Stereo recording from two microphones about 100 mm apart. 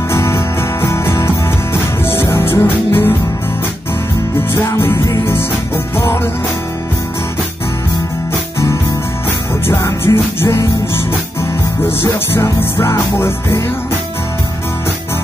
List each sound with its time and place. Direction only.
0.1 s music: 30° left (ahead or behind)
4.6 s music: 25° left (ahead or behind)
9.7 s music: 30° left (ahead or behind)
12.0 s music: 30° left (ahead or behind)